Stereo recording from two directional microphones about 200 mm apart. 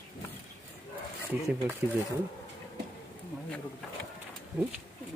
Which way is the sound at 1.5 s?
10° right (ahead or behind).